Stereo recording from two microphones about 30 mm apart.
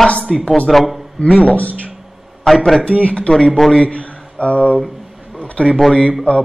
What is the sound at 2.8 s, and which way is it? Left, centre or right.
Speech, left.